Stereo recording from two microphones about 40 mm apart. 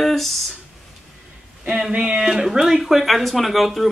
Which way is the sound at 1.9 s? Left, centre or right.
Right.